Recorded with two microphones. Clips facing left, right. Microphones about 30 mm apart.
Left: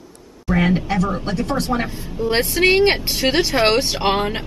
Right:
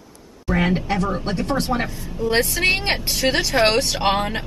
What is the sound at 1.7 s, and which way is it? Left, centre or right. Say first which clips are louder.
Speech: left 2 dB; centre.